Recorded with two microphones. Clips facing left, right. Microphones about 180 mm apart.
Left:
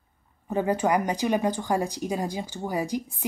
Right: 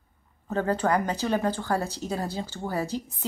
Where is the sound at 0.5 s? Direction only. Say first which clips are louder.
Left 1 dB; 15° left (ahead or behind).